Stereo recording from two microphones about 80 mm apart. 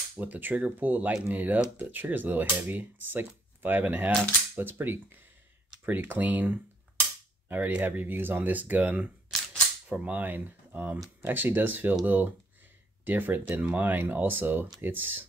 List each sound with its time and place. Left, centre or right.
0.1 s speech: right